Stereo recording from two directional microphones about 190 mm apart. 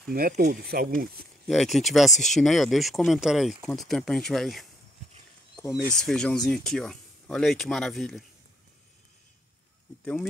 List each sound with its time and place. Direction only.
0.1 s speech: 50° right (ahead or behind)
1.5 s speech: centre (ahead or behind)
5.9 s speech: 5° left (ahead or behind)